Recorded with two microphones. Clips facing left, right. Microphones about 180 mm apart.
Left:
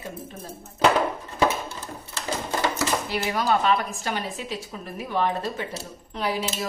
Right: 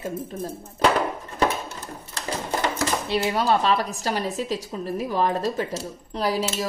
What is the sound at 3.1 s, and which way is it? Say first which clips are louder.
Speech: right 5 dB; 30° right (ahead or behind).